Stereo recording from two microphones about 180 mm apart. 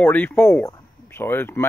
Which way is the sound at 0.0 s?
10° left (ahead or behind).